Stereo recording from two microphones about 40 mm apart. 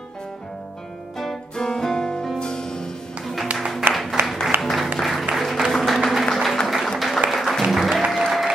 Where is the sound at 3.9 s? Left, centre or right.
Centre.